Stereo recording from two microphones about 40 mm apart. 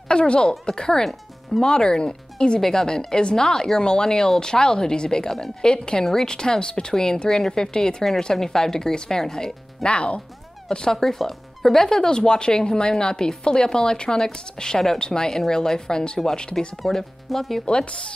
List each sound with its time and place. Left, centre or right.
0.1 s speech: left
9.8 s speech: left
10.7 s speech: centre
17.6 s speech: left